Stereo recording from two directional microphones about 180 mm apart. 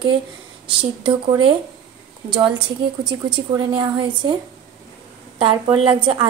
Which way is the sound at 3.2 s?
25° right (ahead or behind).